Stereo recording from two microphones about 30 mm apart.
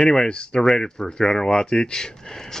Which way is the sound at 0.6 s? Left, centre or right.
Centre.